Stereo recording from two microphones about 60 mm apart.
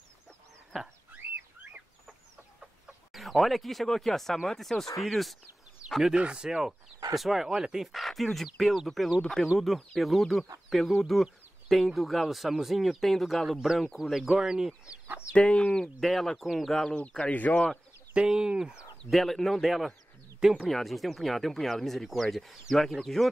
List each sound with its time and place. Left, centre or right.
1.1 s a sound: right
2.6 s chicken: centre
4.5 s speech: centre
6.1 s speech: centre
15.3 s speech: centre
16.0 s speech: centre
17.3 s speech: left
18.1 s speech: centre
19.0 s speech: centre
20.3 s speech: centre
20.7 s speech: centre